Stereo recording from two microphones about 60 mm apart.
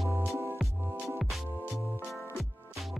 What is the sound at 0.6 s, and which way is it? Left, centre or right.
Music, centre.